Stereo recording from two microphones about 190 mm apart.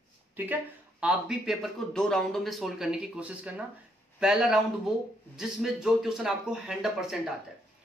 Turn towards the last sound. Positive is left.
turn(degrees=0)  # may be behind; listen again after turning